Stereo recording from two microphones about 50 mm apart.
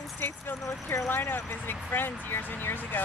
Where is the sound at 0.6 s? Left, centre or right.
Left.